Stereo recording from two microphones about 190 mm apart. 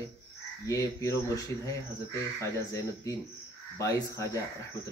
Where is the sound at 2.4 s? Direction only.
15° left (ahead or behind).